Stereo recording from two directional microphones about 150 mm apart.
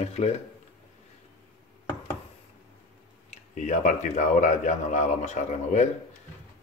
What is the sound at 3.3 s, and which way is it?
Speech, 55° left (ahead or behind).